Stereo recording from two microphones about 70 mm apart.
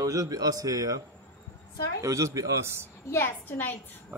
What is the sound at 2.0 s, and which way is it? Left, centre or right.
Speech, right.